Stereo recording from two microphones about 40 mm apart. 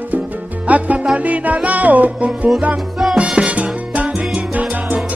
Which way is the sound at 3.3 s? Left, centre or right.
Right.